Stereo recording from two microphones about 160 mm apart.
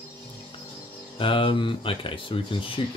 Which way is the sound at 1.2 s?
35° left (ahead or behind).